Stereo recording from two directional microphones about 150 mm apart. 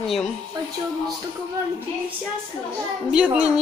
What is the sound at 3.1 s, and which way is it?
Speech, 5° right (ahead or behind).